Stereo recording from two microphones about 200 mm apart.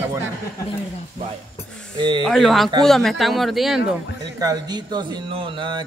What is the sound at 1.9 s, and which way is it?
Speech, 25° right (ahead or behind).